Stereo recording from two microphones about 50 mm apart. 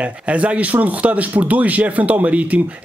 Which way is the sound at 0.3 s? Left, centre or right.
Right.